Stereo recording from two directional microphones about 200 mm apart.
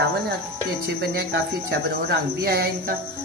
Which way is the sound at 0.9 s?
55° right (ahead or behind).